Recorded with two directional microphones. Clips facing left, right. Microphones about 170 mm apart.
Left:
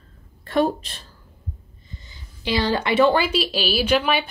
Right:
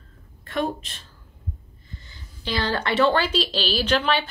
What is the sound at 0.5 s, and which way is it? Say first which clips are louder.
Speech: left 6 dB; 35° left (ahead or behind).